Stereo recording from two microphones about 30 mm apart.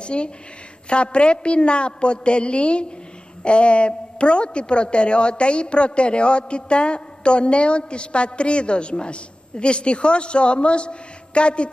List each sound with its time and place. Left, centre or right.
0.0 s a woman's voice: left